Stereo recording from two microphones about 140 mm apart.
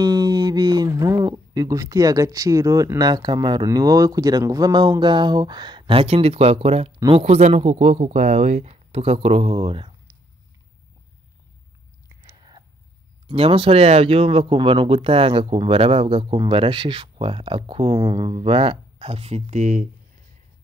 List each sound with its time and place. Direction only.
0.0 s speech: 30° right (ahead or behind)
12.4 s a sound: 30° right (ahead or behind)
13.3 s speech: 40° right (ahead or behind); by 19.9 s 60° right (ahead or behind)